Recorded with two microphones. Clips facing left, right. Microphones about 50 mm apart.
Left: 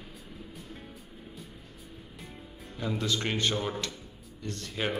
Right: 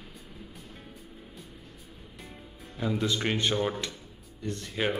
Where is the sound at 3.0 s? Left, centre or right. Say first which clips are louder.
Right 1 dB; centre.